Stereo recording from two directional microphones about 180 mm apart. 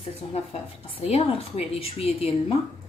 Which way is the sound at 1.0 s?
30° left (ahead or behind).